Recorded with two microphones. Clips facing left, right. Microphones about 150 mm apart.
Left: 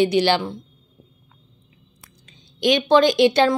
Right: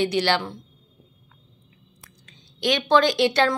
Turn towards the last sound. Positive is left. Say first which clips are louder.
# left 4 dB
turn(degrees=15)  # may be behind; listen again after turning